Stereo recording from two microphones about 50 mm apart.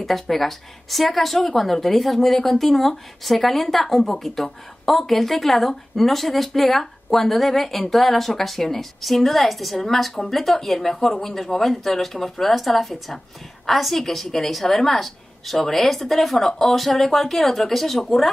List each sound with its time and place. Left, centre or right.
0.0 s speech: centre